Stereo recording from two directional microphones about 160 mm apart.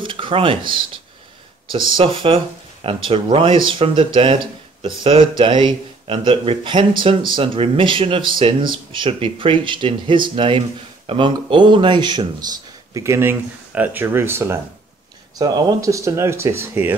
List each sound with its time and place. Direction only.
0.0 s speech: 30° right (ahead or behind)
1.9 s speech: 30° right (ahead or behind)
12.9 s speech: 15° right (ahead or behind)